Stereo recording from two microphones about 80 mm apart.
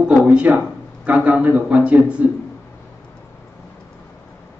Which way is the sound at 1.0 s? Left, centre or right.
Centre.